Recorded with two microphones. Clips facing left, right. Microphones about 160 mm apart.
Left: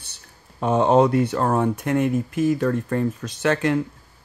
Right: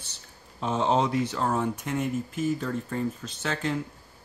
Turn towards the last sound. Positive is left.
turn(degrees=65)  # may be behind; listen again after turning